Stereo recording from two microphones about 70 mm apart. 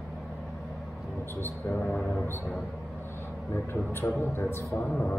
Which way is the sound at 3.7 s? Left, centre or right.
Left.